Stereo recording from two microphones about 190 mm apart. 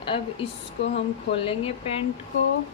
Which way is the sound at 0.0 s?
25° left (ahead or behind).